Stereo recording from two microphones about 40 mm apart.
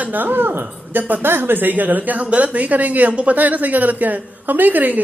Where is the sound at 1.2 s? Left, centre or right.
Right.